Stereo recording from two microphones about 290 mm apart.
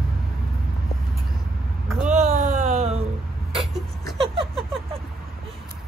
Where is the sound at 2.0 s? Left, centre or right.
Right.